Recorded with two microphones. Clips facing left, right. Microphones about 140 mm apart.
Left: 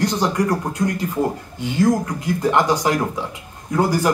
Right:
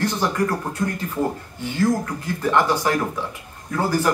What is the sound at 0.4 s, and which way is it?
A man's voice, 15° left (ahead or behind).